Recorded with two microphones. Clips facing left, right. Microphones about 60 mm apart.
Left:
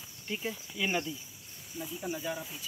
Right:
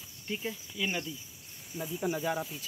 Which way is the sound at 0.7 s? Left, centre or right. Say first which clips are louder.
Left 3 dB; centre.